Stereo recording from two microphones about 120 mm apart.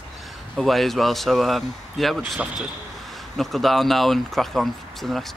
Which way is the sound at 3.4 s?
Centre (ahead or behind).